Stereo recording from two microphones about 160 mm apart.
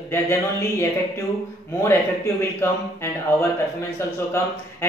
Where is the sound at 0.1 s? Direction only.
20° left (ahead or behind).